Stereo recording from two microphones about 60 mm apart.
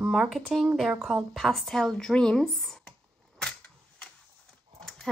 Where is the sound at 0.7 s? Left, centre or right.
Centre.